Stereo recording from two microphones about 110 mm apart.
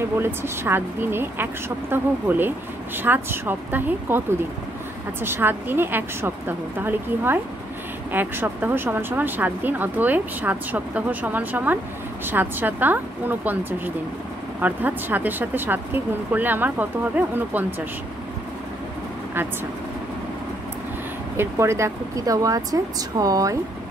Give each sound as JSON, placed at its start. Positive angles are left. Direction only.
{"t": 0.2, "sound": "speech", "side_deg": -20}
{"t": 21.4, "sound": "speech", "side_deg": -25}